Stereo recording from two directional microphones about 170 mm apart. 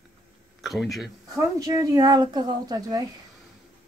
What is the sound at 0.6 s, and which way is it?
Speech, centre (ahead or behind).